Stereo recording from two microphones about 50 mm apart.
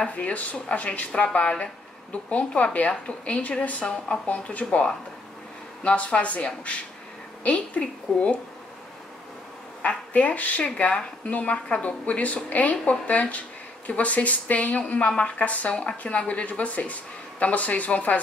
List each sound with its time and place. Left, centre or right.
0.0 s speech: left
9.8 s speech: left